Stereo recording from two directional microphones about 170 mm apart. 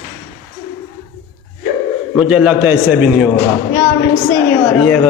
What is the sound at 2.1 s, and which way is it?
A man's voice, 5° right (ahead or behind).